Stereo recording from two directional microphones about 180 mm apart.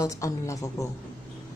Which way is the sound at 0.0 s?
15° left (ahead or behind).